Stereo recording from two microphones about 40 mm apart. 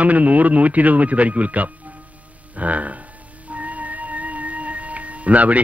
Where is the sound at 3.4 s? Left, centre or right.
Right.